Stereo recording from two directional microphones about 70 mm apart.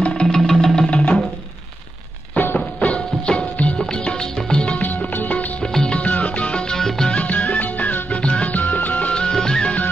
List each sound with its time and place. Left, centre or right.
0.0 s music: centre
2.3 s music: left
2.8 s music: centre
5.6 s music: centre
7.2 s music: left